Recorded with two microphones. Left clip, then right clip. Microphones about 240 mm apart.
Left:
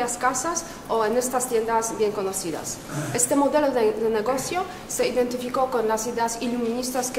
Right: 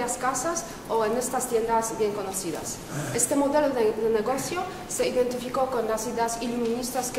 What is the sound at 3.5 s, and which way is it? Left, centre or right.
A woman's voice, left.